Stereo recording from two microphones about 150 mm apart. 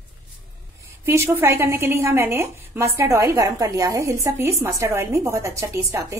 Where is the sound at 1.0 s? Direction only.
15° right (ahead or behind).